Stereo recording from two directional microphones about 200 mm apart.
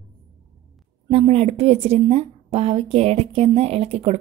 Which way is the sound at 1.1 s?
30° right (ahead or behind).